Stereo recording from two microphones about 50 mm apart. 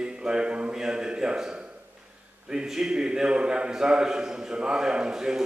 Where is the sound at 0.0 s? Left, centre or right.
Centre.